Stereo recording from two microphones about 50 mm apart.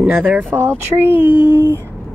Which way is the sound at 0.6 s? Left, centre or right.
Right.